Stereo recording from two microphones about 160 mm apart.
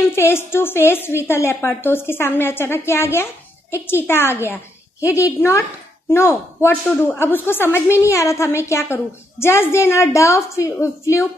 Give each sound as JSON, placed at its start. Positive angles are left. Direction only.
{"t": 0.1, "sound": "speech", "side_deg": 15}